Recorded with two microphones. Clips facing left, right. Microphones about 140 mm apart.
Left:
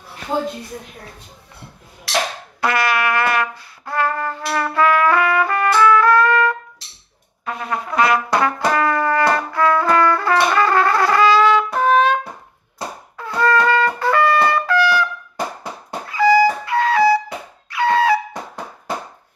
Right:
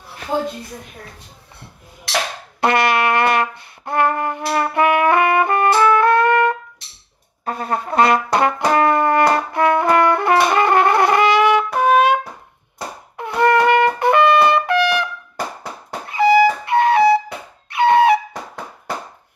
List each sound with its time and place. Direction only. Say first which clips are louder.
2.6 s brass instrument: right 3 dB; 25° right (ahead or behind)
7.4 s brass instrument: right 2 dB; 40° right (ahead or behind); by 12.2 s 10° right (ahead or behind)
13.2 s trumpet: right 2 dB; 20° right (ahead or behind)
16.1 s music: right 1 dB; 25° right (ahead or behind)